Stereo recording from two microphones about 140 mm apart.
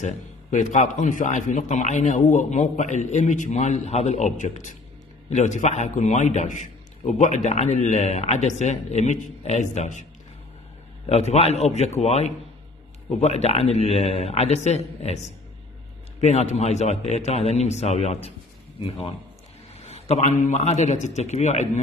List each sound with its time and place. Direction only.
0.0 s a man's voice: 60° left (ahead or behind)
11.1 s a man's voice: 50° left (ahead or behind)
16.2 s a man's voice: 55° left (ahead or behind)